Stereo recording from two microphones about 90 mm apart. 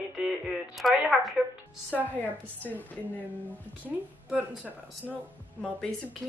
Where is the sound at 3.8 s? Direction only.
15° right (ahead or behind).